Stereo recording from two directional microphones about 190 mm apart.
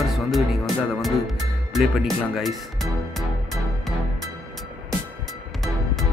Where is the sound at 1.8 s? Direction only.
Centre (ahead or behind).